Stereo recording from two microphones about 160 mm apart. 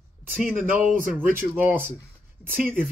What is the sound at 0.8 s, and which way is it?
Speech, 55° right (ahead or behind).